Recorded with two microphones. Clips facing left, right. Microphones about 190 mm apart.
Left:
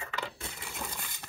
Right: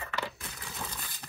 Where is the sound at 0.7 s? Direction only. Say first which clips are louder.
Right 1 dB; 15° left (ahead or behind).